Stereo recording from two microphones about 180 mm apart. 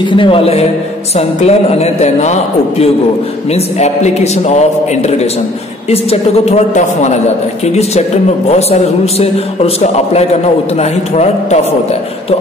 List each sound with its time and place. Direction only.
0.0 s a man's voice: 25° left (ahead or behind)